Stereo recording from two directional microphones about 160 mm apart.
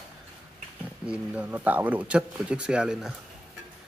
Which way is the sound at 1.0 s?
10° right (ahead or behind).